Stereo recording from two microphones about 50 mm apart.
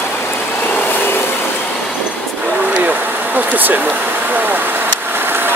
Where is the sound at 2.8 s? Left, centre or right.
Right.